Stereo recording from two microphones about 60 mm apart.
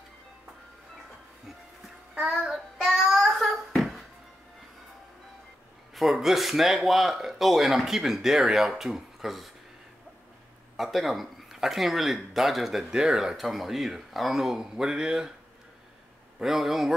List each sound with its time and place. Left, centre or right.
2.1 s child singing: centre
2.5 s child singing: centre
5.9 s speech: centre
10.8 s speech: centre
16.3 s speech: centre